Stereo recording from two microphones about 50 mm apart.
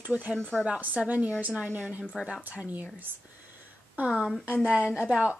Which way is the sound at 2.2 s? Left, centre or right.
Centre.